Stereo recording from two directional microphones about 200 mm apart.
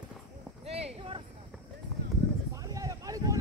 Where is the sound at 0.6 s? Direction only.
30° right (ahead or behind).